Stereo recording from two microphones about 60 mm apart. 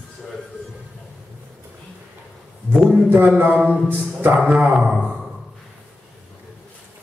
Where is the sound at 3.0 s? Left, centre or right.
Right.